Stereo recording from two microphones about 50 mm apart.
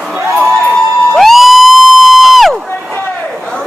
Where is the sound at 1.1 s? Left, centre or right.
Centre.